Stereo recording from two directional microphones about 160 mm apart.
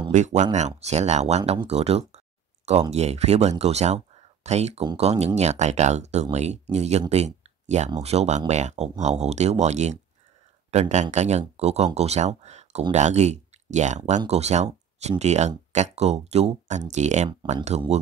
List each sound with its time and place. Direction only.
0.1 s speech: 50° right (ahead or behind)